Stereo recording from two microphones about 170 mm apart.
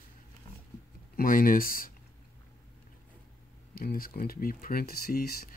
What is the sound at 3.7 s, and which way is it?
Speech, 60° left (ahead or behind).